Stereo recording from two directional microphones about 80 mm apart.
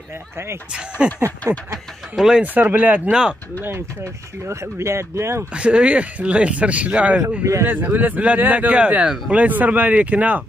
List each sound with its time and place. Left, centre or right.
0.7 s speech: centre
2.1 s speech: centre
2.4 s speech: right
3.6 s speech: right
5.5 s speech: centre